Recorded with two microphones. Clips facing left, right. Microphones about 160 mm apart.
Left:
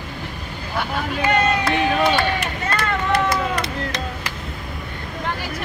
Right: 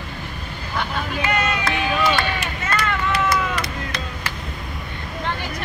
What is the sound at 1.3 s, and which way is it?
Run, 30° left (ahead or behind).